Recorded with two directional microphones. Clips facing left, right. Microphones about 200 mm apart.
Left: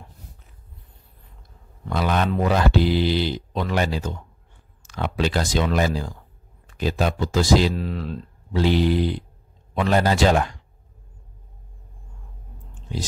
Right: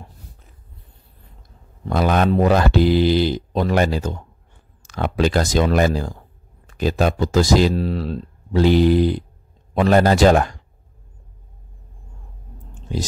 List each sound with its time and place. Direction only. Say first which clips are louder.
1.9 s speech: right 5 dB; 45° right (ahead or behind)